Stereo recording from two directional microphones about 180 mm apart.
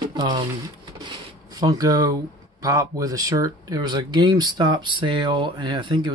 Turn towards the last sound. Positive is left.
turn(degrees=-25)  # may be behind; listen again after turning